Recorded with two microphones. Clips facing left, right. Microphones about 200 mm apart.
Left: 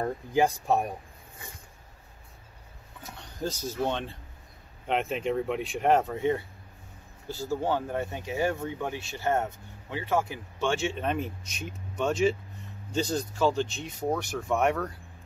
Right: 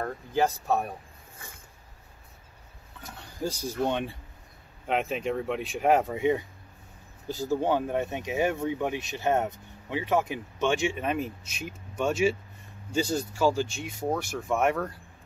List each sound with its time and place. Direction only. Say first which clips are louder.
0.0 s speech: left 2 dB; 15° left (ahead or behind)
3.4 s speech: right 1 dB; 10° right (ahead or behind)